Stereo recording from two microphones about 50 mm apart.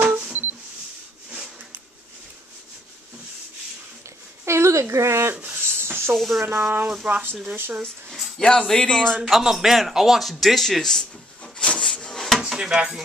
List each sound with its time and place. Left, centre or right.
0.0 s camera: right
0.3 s camera: right
4.5 s speech: right
5.3 s a sound: right
6.1 s speech: centre
6.6 s a sound: right
8.4 s speech: centre
9.3 s a man's voice: centre
12.4 s speech: centre